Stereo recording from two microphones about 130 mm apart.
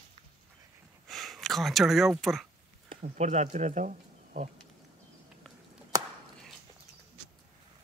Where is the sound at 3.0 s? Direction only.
65° right (ahead or behind); by 4.5 s 80° right.